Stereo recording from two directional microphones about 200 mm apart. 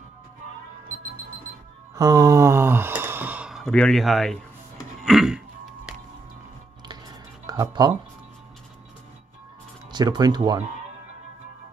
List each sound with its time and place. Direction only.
2.0 s speech: 15° right (ahead or behind); by 4.4 s centre (ahead or behind)
5.0 s a sound: centre (ahead or behind)
7.4 s speech: 15° right (ahead or behind)
9.8 s speech: 20° right (ahead or behind)